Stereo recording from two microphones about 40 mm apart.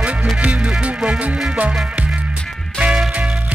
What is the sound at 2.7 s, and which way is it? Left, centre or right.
Music, right.